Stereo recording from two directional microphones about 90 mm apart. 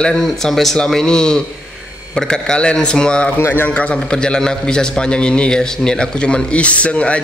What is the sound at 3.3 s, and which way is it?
A man's voice, 25° left (ahead or behind).